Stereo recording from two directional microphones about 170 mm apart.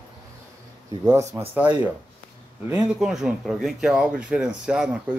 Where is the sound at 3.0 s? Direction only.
Centre (ahead or behind).